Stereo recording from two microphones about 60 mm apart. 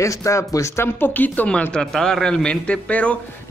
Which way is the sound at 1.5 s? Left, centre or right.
Centre.